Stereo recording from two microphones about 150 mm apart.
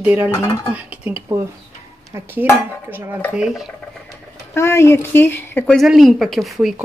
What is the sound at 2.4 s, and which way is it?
Speech, 15° right (ahead or behind).